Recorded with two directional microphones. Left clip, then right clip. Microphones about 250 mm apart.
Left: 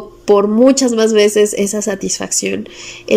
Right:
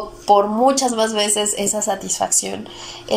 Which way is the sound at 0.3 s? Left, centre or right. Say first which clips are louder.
Left 4 dB; left.